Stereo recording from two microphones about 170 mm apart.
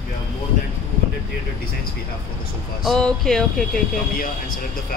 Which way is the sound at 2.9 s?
5° left (ahead or behind).